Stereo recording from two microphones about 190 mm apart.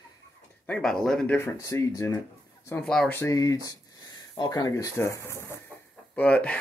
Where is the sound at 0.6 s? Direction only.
5° left (ahead or behind).